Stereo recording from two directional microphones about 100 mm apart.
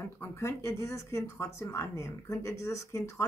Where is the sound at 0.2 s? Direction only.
30° left (ahead or behind).